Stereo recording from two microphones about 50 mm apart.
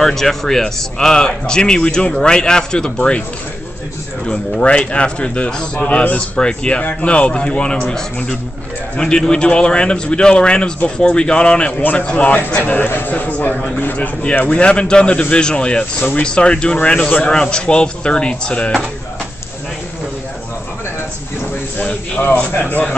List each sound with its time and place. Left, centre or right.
0.0 s speech: centre
4.3 s a man's voice: centre
8.9 s a man's voice: centre
12.6 s a man's voice: left; by 18.8 s centre
22.2 s a man's voice: left